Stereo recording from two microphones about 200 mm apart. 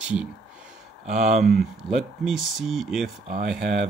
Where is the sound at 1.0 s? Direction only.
35° right (ahead or behind).